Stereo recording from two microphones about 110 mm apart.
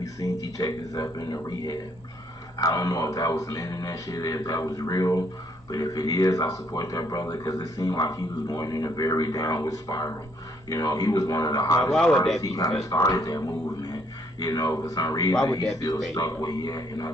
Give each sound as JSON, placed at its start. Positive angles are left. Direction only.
{"t": 0.0, "sound": "speech", "side_deg": 30}
{"t": 11.8, "sound": "speech", "side_deg": 5}
{"t": 12.4, "sound": "speech", "side_deg": 35}
{"t": 14.4, "sound": "speech", "side_deg": 35}